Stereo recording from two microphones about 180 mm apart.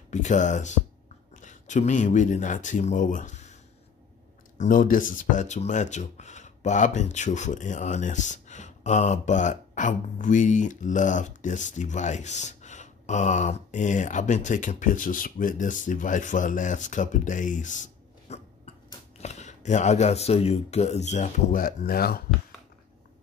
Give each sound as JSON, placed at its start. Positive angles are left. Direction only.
{"t": 0.1, "sound": "speech", "side_deg": 40}
{"t": 4.6, "sound": "speech", "side_deg": 50}
{"t": 18.3, "sound": "a sound", "side_deg": 40}
{"t": 19.1, "sound": "speech", "side_deg": 40}